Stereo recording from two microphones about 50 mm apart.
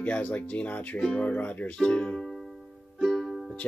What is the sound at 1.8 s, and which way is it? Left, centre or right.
Speech, centre.